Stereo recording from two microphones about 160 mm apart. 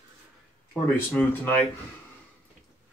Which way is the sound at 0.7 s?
10° left (ahead or behind).